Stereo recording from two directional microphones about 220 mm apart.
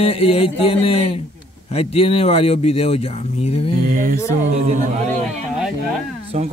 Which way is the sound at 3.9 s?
40° right (ahead or behind).